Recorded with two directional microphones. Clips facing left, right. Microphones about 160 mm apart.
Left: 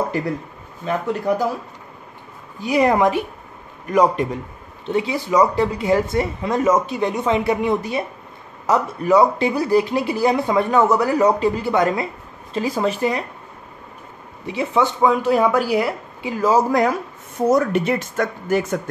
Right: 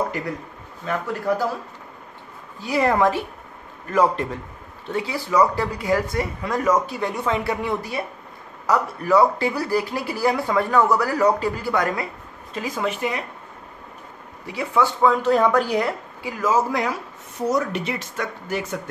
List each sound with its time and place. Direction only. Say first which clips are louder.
0.8 s speech: left 3 dB; 20° left (ahead or behind)
2.6 s a man's voice: left 3 dB; 15° left (ahead or behind); by 13.2 s 35° left (ahead or behind)
14.4 s speech: left 2 dB; 20° left (ahead or behind); by 16.0 s 5° left (ahead or behind)
16.2 s a man's voice: left 4 dB; 25° left (ahead or behind); by 18.8 s 45° left (ahead or behind)